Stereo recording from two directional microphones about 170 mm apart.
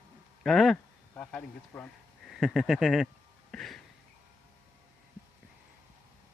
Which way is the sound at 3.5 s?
Centre (ahead or behind).